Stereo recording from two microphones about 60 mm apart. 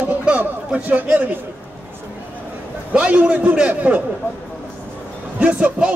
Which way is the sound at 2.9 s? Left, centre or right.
Right.